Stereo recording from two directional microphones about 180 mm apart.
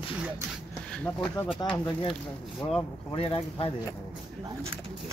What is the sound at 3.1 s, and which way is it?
Speech, 30° left (ahead or behind).